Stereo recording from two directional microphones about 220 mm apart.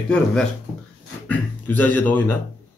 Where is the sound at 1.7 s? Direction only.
5° left (ahead or behind).